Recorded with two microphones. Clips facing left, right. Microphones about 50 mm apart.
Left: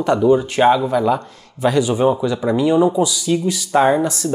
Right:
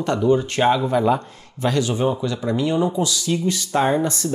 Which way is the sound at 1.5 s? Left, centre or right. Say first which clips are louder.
Left 5 dB; centre.